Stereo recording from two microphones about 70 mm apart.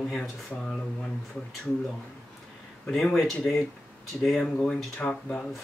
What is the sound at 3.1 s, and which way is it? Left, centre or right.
Speech, centre.